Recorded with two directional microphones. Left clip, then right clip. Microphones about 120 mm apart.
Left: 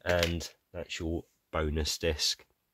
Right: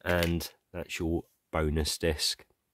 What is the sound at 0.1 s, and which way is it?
Speech, 85° right.